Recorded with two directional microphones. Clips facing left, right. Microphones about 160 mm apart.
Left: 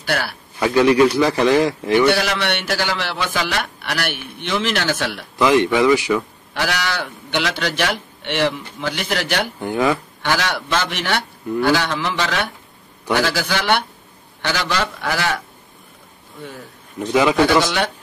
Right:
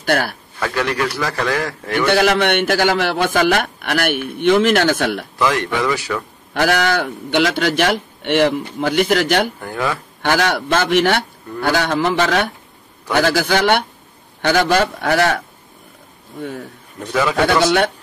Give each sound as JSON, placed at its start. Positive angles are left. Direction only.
{"t": 0.0, "sound": "a man's voice", "side_deg": -45}
{"t": 0.6, "sound": "a man's voice", "side_deg": 15}
{"t": 2.1, "sound": "a man's voice", "side_deg": -50}
{"t": 5.4, "sound": "a man's voice", "side_deg": 20}
{"t": 6.5, "sound": "a man's voice", "side_deg": -50}
{"t": 9.6, "sound": "speech", "side_deg": 20}
{"t": 10.2, "sound": "a man's voice", "side_deg": -50}
{"t": 17.0, "sound": "a man's voice", "side_deg": 15}
{"t": 17.6, "sound": "speech", "side_deg": -55}